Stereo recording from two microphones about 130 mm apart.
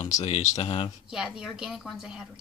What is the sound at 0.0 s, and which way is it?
Speech, 55° left (ahead or behind).